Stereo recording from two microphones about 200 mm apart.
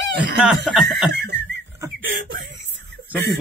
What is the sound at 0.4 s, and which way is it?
Speech, centre (ahead or behind).